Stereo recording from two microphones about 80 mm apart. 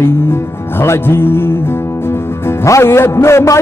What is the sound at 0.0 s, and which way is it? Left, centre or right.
Music, left.